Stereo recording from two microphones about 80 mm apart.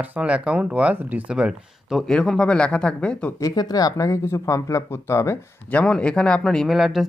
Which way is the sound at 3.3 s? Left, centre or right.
Left.